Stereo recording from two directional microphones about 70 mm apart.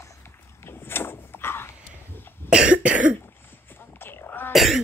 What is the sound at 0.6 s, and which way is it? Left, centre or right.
Door, left.